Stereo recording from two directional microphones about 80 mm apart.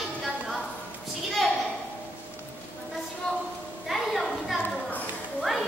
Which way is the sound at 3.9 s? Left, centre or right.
Centre.